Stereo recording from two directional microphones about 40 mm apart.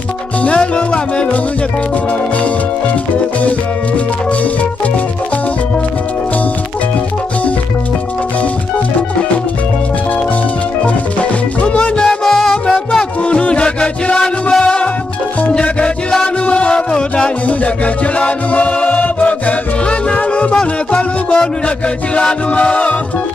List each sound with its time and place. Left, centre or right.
0.4 s music: left
11.6 s music: left
12.1 s music: centre
13.3 s music: left
16.4 s music: left
22.1 s a capella: left